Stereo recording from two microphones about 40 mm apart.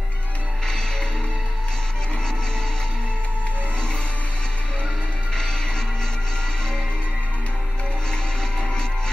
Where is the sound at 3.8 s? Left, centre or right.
Left.